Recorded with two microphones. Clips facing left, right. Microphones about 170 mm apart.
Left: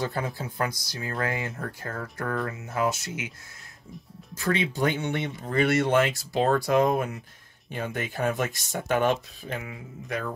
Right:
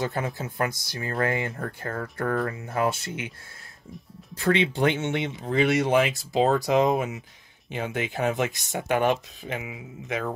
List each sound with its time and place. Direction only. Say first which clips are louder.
0.0 s speech: right 1 dB; 20° right (ahead or behind)
4.5 s speech: right 3 dB; 25° right (ahead or behind)
7.0 s speech: right 1 dB; 5° right (ahead or behind)
7.7 s speech: right 2 dB; 20° right (ahead or behind)